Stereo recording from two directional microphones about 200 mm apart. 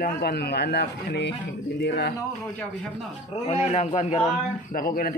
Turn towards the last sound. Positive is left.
turn(degrees=35)  # may be behind; listen again after turning